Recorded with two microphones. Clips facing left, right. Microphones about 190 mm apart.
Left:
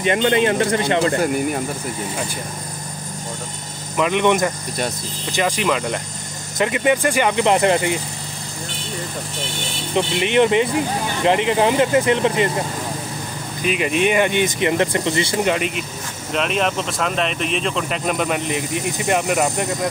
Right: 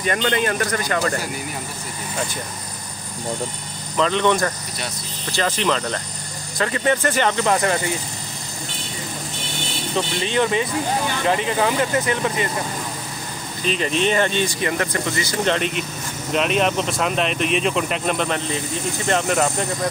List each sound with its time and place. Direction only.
0.0 s speech: 20° left (ahead or behind)
1.2 s speech: 55° left (ahead or behind)
3.9 s speech: 15° left (ahead or behind)
9.9 s speech: 20° left (ahead or behind)
13.6 s speech: 10° left (ahead or behind)
15.4 s speech: 5° left (ahead or behind)